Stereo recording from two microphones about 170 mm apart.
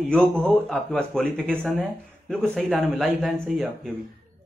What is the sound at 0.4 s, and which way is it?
Speech, 5° left (ahead or behind).